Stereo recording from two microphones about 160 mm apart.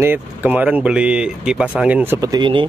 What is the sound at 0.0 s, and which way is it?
Speech, 10° right (ahead or behind).